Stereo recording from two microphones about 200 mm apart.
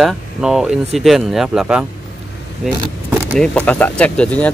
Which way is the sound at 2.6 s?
5° right (ahead or behind).